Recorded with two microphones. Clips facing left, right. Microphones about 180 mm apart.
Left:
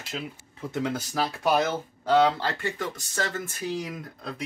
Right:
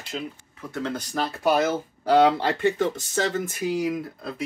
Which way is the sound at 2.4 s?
20° right (ahead or behind).